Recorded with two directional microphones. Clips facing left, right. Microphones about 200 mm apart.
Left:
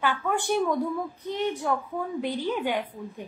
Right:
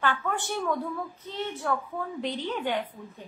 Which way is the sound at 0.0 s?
10° left (ahead or behind).